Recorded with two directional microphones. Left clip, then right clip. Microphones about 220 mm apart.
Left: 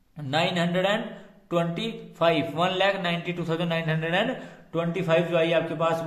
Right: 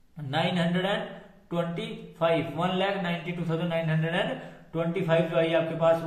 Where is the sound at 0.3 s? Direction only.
45° left (ahead or behind).